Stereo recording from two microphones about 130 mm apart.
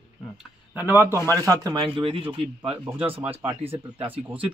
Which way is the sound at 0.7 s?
15° right (ahead or behind).